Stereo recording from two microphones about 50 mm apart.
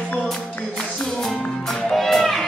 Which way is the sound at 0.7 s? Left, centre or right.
Centre.